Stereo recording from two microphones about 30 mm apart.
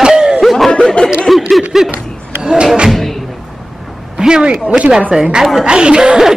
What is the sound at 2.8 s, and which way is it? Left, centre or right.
Music, centre.